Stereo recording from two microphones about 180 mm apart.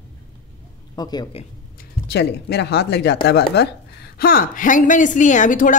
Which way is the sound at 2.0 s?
70° left (ahead or behind).